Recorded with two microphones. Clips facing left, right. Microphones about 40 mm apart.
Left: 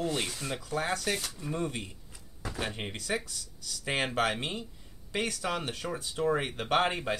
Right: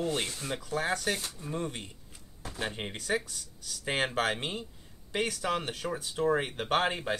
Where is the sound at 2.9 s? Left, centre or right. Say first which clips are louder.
Right 3 dB; right.